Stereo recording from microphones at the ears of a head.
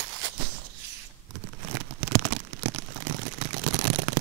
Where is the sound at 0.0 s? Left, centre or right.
Right.